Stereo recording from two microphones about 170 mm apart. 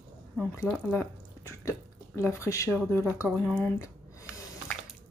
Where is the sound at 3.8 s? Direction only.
20° left (ahead or behind).